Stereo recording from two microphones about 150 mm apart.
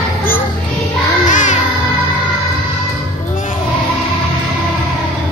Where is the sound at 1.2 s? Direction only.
55° left (ahead or behind).